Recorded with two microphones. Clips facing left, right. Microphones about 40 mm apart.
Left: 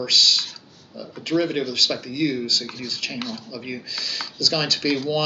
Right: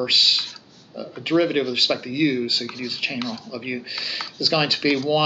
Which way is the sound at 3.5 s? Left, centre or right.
Right.